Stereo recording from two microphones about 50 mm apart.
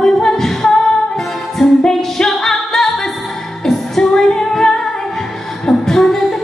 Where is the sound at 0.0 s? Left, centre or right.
Centre.